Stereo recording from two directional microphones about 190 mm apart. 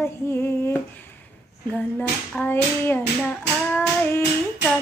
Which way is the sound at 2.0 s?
10° left (ahead or behind).